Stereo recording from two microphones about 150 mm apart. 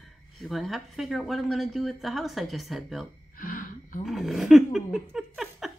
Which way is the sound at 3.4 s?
65° left (ahead or behind).